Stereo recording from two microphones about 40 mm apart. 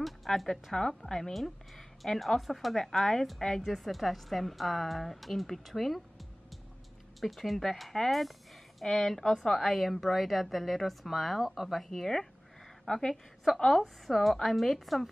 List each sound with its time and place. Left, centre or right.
0.0 s music: centre
0.7 s a woman's voice: centre
7.2 s a woman's voice: centre
13.1 s a woman's voice: centre